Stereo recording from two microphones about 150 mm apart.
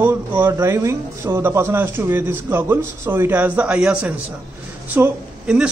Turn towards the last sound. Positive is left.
turn(degrees=-5)  # may be behind; listen again after turning